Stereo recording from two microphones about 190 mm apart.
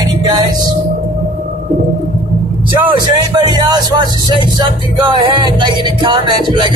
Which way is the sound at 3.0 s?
25° right (ahead or behind).